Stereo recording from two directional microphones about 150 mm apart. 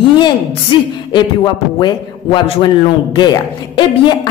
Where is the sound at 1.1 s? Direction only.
30° left (ahead or behind).